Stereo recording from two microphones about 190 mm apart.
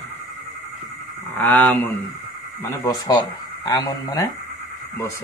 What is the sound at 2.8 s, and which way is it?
Speech, 20° left (ahead or behind).